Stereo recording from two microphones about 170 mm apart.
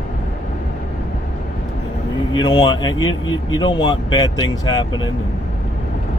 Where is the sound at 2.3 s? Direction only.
25° left (ahead or behind).